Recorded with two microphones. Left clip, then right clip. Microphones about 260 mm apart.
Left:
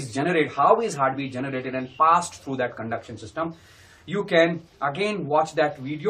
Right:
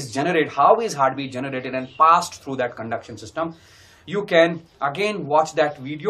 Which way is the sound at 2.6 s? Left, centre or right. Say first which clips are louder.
Right 2 dB; centre.